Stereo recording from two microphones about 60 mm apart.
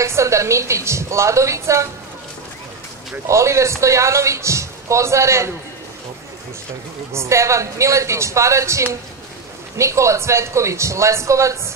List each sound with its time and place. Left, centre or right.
0.0 s a man's voice: right
3.3 s a man's voice: right
7.1 s a man's voice: right